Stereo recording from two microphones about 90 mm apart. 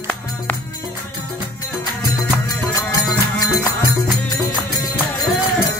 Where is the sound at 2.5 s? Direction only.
40° left (ahead or behind).